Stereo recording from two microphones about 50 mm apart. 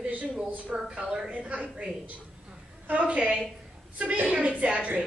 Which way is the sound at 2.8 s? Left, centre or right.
Right.